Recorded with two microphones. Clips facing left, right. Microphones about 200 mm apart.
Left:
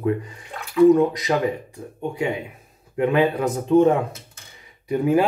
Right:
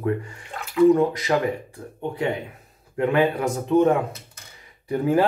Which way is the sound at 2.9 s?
20° left (ahead or behind).